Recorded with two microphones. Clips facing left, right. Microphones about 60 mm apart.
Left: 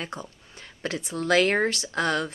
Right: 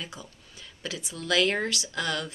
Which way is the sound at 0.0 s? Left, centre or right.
Left.